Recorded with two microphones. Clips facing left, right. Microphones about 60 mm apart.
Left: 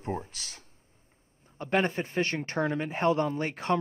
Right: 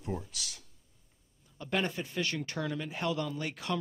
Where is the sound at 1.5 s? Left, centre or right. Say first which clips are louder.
Left 6 dB; left.